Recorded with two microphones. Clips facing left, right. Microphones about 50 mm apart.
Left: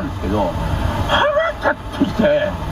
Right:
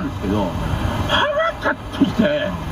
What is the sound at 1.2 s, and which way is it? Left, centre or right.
Vehicle, centre.